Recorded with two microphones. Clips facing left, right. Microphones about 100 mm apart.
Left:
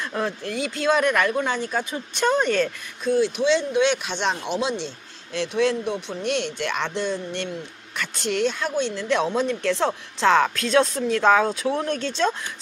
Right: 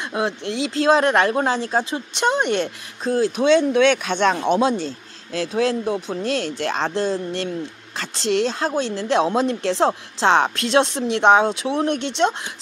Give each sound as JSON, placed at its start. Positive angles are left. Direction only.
{"t": 0.7, "sound": "speech", "side_deg": -30}
{"t": 2.1, "sound": "speech", "side_deg": -20}
{"t": 3.0, "sound": "speech", "side_deg": -40}